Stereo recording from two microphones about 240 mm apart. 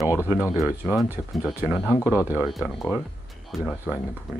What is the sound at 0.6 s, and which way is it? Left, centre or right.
Speech, centre.